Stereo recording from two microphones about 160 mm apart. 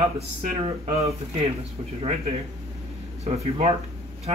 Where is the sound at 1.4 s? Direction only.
40° right (ahead or behind).